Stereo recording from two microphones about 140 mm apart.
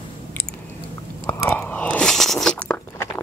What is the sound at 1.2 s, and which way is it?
Biting, 20° left (ahead or behind).